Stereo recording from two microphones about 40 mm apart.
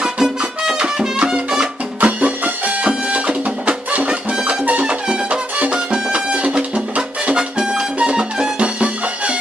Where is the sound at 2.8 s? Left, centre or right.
Right.